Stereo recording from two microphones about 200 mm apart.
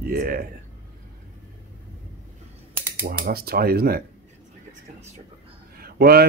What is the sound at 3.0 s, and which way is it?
Speech, 50° right (ahead or behind).